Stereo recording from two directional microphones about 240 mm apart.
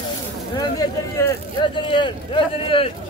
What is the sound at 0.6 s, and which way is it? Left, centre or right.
Speech, centre.